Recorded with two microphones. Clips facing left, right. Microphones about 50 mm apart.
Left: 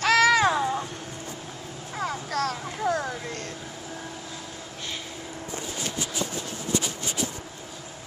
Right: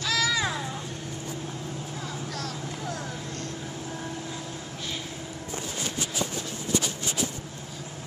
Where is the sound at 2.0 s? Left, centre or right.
Left.